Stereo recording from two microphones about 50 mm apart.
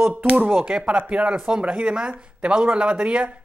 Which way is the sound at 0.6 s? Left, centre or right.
Centre.